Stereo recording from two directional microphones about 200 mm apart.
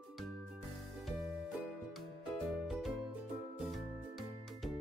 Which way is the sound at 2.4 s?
Centre (ahead or behind).